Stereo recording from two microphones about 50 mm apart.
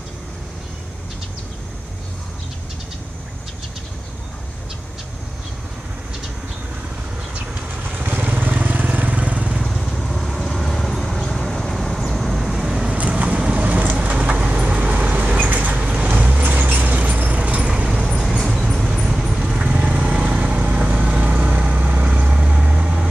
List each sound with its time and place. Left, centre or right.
7.7 s vehicle: right
9.6 s vehicle: centre
12.9 s vehicle: right
15.7 s vehicle: right
18.0 s vehicle: centre
18.4 s a sound: centre
18.9 s vehicle: centre
19.4 s vehicle: right